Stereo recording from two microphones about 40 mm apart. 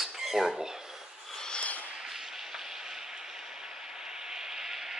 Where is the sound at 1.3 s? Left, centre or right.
Centre.